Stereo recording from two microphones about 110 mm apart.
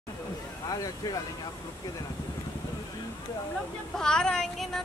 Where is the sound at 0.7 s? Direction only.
35° left (ahead or behind).